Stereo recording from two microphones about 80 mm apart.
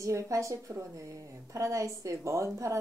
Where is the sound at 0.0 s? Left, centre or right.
Right.